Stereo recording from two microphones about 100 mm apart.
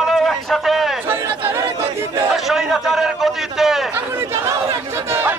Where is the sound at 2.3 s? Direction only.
5° right (ahead or behind).